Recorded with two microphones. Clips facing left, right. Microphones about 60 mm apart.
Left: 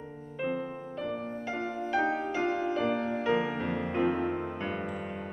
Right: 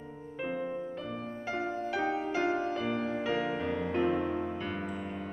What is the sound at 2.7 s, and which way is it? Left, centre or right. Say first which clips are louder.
Music: left 3 dB; centre.